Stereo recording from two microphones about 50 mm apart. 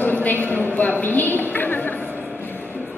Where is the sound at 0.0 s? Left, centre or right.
Left.